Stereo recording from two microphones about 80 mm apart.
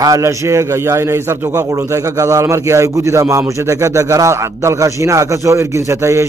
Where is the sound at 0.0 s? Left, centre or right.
Right.